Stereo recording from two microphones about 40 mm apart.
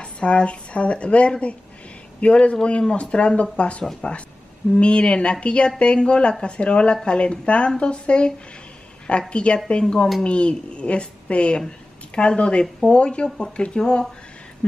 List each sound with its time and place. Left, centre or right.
0.0 s a woman's voice: left
9.3 s a woman's voice: left